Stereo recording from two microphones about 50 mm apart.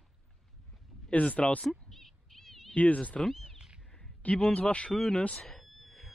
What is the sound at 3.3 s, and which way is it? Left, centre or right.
Cat, centre.